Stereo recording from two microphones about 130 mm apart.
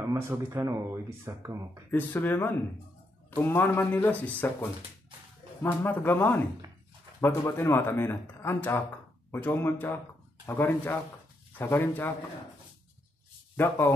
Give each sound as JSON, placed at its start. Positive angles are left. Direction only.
{"t": 0.1, "sound": "speech", "side_deg": -25}
{"t": 1.9, "sound": "speech", "side_deg": 15}
{"t": 13.6, "sound": "speech", "side_deg": 20}